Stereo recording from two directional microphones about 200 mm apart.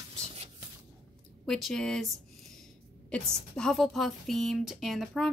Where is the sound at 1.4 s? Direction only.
5° left (ahead or behind).